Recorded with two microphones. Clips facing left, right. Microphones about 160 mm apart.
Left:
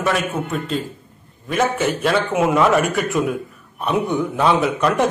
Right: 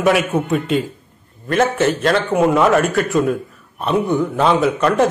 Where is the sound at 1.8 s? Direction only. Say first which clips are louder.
Right 3 dB; 10° left (ahead or behind).